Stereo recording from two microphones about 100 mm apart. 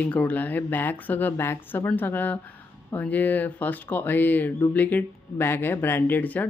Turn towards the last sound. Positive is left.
turn(degrees=15)  # may be behind; listen again after turning